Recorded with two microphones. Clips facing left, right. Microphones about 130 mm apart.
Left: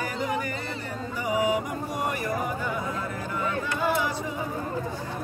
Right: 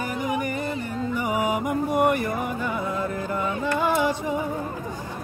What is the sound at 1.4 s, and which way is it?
Mantra, 55° right (ahead or behind).